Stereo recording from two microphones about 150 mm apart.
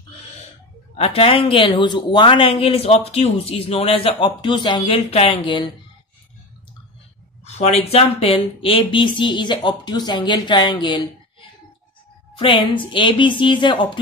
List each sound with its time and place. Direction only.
0.9 s speech: 40° left (ahead or behind)
7.4 s speech: 45° left (ahead or behind)
12.4 s speech: 35° left (ahead or behind)